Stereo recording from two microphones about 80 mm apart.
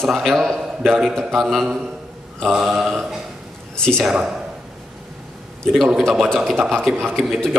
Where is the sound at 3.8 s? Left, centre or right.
Centre.